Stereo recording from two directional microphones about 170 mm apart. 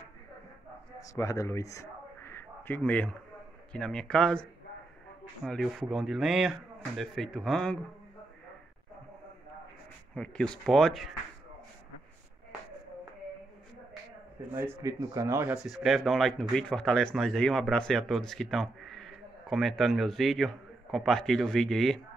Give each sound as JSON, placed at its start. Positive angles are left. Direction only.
{"t": 0.9, "sound": "a sound", "side_deg": 20}
{"t": 3.7, "sound": "speech", "side_deg": 5}
{"t": 10.1, "sound": "speech", "side_deg": 5}
{"t": 14.5, "sound": "speech", "side_deg": -20}
{"t": 15.5, "sound": "speech", "side_deg": 0}